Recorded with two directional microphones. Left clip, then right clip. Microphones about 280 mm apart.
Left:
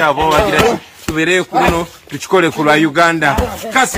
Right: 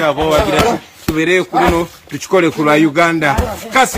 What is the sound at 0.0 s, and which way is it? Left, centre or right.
A man's voice, centre.